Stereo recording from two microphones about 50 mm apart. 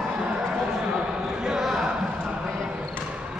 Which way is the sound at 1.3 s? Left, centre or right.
Centre.